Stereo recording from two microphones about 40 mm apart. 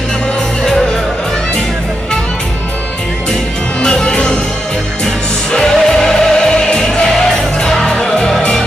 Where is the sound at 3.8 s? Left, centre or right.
Left.